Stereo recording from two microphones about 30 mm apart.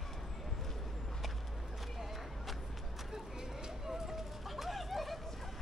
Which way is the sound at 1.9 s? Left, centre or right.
Centre.